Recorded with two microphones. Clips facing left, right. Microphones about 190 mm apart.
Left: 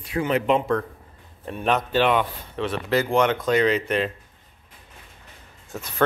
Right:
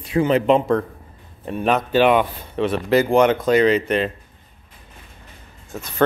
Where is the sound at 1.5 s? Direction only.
Centre (ahead or behind).